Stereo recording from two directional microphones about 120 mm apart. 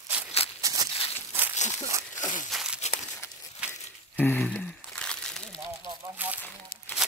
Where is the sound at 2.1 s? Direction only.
90° left.